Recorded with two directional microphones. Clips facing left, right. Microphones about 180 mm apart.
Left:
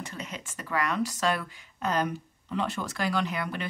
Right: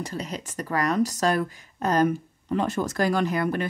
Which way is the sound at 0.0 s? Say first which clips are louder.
Right 7 dB; 35° right (ahead or behind).